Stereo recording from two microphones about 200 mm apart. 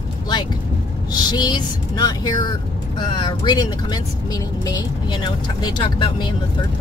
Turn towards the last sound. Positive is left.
turn(degrees=20)  # may be behind; listen again after turning